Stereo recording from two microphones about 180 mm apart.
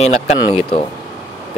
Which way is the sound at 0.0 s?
35° left (ahead or behind).